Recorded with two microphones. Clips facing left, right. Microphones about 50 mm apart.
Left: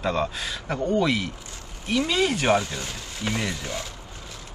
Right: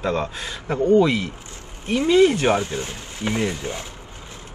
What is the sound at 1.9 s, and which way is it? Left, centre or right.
Speech, right.